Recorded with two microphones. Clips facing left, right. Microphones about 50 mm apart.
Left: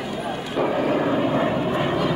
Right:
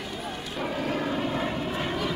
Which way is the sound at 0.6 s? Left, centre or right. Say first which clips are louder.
Left 8 dB; centre.